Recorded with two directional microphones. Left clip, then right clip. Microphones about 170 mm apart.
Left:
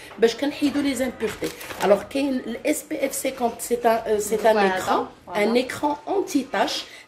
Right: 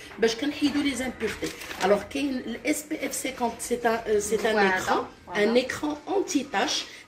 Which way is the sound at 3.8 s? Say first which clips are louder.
Left 4 dB; 25° left (ahead or behind).